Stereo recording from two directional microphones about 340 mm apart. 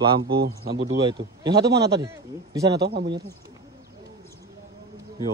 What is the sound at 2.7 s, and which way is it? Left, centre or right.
Speech, right.